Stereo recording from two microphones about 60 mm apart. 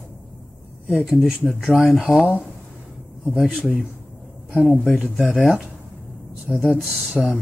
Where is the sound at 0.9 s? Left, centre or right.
Centre.